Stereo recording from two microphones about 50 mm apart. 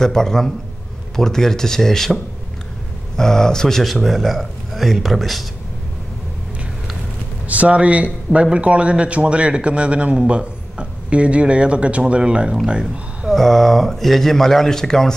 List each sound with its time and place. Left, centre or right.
0.0 s speech: centre
3.2 s speech: centre
7.4 s a man's voice: right
13.3 s speech: centre